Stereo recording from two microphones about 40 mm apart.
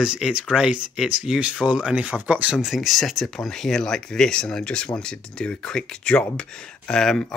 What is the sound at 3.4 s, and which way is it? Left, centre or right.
Speech, centre.